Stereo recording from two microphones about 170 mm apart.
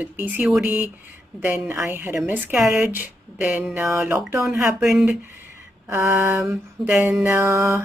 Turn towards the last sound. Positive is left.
turn(degrees=-15)  # may be behind; listen again after turning